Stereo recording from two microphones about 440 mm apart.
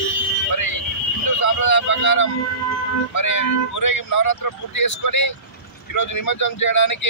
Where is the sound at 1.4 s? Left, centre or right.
Left.